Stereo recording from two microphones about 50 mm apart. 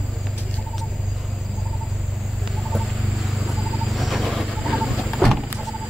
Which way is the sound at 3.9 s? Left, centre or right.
Centre.